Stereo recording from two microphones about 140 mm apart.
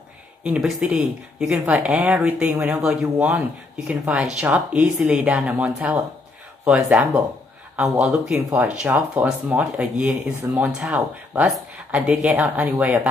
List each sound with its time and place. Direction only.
0.4 s a man's voice: 5° right (ahead or behind)
7.0 s a man's voice: 10° right (ahead or behind)